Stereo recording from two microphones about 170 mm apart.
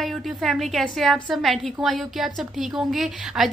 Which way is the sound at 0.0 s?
Centre (ahead or behind).